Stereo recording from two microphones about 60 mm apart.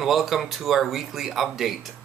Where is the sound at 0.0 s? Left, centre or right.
Centre.